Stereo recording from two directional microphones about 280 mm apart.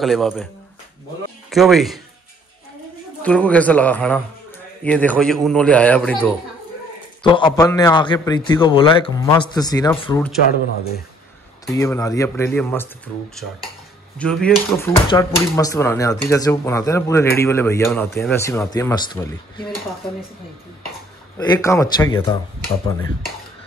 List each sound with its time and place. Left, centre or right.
0.0 s a man's voice: centre
1.5 s a man's voice: centre
3.2 s a man's voice: centre
7.2 s speech: centre
11.6 s speech: centre
21.4 s speech: centre